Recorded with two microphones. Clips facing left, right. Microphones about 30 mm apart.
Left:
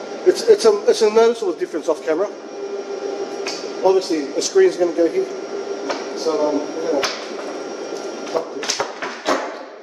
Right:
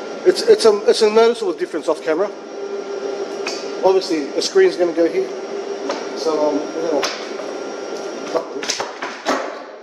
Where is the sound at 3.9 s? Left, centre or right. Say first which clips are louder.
Right 1 dB; right.